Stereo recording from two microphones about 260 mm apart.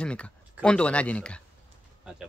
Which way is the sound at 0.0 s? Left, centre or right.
Centre.